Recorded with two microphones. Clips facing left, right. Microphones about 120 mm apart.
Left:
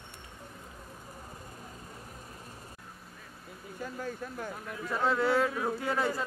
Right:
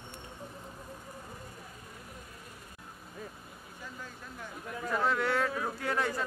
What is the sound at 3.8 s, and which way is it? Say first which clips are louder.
Vehicle: left 9 dB; 50° left (ahead or behind).